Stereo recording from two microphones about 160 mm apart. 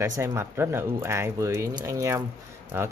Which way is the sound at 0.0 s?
20° right (ahead or behind).